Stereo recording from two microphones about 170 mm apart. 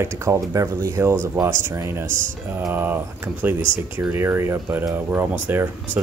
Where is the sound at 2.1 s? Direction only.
50° right (ahead or behind).